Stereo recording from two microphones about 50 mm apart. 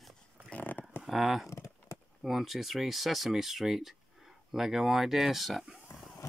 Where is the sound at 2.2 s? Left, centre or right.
Centre.